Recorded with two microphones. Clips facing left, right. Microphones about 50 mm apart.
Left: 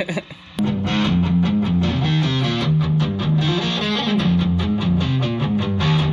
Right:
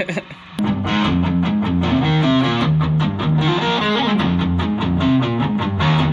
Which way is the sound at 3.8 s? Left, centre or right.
Centre.